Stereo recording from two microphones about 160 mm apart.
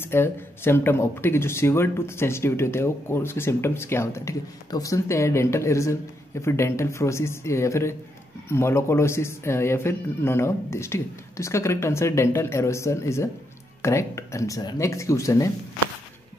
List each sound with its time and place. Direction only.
0.0 s speech: 15° left (ahead or behind)